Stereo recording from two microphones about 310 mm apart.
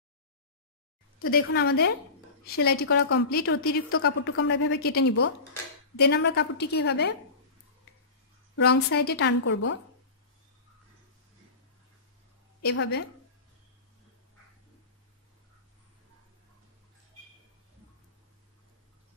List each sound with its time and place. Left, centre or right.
1.3 s a woman's voice: left
5.0 s speech: left
5.9 s a woman's voice: left
8.9 s a woman's voice: left
12.6 s a woman's voice: left